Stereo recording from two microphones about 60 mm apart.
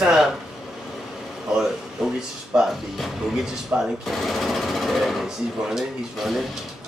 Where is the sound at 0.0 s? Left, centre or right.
Centre.